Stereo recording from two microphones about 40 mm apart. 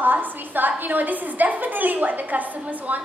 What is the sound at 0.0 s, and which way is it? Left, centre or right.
A woman's voice, right.